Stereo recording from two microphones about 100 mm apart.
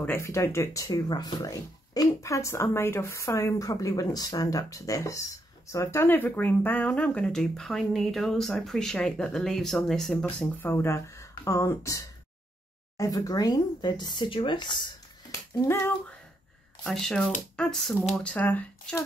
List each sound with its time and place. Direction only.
0.0 s speech: 25° left (ahead or behind); by 10.1 s 5° left (ahead or behind)
10.2 s speech: 20° left (ahead or behind); by 14.8 s 50° left (ahead or behind)
16.8 s speech: 5° left (ahead or behind)